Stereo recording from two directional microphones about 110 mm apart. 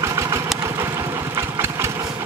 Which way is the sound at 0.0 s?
25° right (ahead or behind).